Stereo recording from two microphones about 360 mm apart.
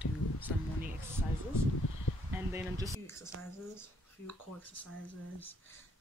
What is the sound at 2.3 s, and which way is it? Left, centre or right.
Speech, centre.